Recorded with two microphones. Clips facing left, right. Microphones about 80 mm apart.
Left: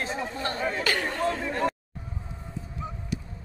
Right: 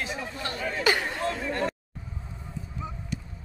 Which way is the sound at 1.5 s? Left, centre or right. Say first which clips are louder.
Left 2 dB; centre.